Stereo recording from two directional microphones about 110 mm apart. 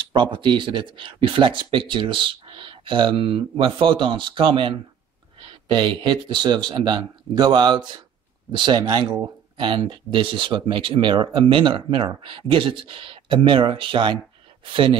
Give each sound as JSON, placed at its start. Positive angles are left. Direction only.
{"t": 0.1, "sound": "speech", "side_deg": -50}